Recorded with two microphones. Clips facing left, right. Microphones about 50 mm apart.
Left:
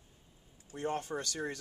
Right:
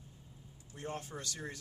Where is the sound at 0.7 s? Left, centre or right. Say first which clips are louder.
Left 7 dB; left.